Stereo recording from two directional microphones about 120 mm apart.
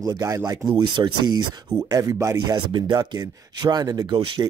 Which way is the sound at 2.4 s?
35° right (ahead or behind).